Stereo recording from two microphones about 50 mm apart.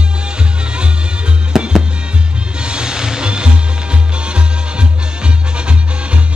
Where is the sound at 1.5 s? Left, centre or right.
Centre.